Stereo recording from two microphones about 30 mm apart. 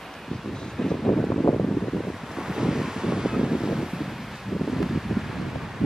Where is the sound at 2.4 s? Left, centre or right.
Centre.